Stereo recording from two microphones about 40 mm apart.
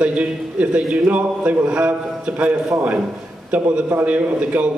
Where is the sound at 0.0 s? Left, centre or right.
Right.